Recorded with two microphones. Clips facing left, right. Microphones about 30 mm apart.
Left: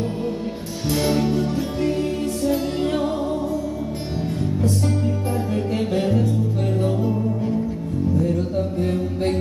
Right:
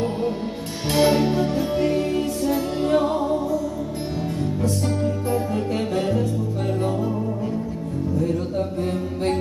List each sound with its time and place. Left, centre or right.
0.9 s music: right
2.9 s music: centre
4.6 s music: centre
8.8 s mantra: centre